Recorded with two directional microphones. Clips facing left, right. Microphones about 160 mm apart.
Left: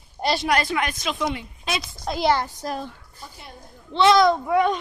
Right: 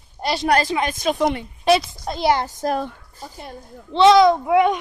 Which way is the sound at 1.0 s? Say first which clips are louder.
Right 6 dB; 50° right (ahead or behind).